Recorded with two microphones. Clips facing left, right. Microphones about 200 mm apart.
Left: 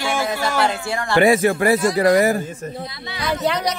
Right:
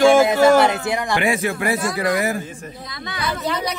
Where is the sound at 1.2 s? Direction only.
40° left (ahead or behind).